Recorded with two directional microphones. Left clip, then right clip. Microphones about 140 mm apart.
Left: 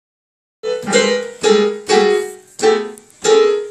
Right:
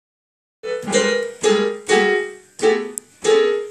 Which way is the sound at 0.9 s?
15° right (ahead or behind).